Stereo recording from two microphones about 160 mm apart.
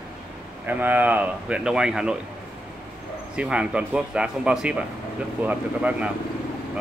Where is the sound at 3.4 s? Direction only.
5° right (ahead or behind).